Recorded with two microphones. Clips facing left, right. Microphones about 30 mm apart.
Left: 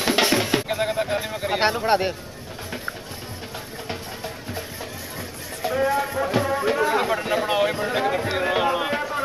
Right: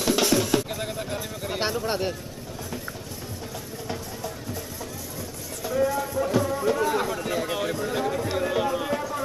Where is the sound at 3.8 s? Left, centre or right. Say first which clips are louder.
Even; left.